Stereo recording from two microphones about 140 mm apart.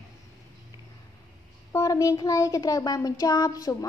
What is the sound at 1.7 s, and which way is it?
A woman's voice, 20° left (ahead or behind).